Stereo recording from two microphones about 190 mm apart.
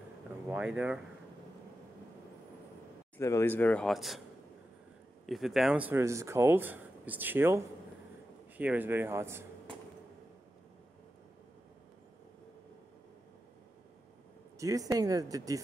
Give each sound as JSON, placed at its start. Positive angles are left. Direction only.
{"t": 0.5, "sound": "speech", "side_deg": -5}
{"t": 3.2, "sound": "speech", "side_deg": 15}
{"t": 5.2, "sound": "speech", "side_deg": 0}
{"t": 14.6, "sound": "speech", "side_deg": -20}